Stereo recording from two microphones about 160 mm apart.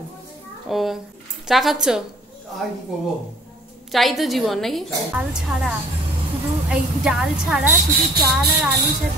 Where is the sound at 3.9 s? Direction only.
Centre (ahead or behind).